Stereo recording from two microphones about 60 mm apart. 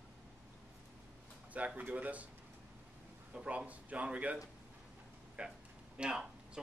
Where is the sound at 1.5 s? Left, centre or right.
Right.